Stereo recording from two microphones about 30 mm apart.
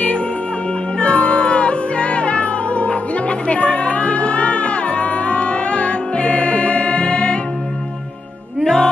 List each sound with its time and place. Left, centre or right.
0.9 s music: left
8.6 s music: left